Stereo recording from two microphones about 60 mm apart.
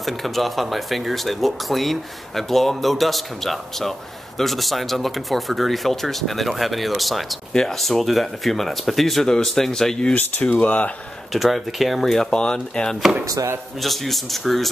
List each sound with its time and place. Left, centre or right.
0.0 s speech: centre
10.1 s speech: left
11.3 s speech: centre
13.2 s speech: right
13.7 s speech: centre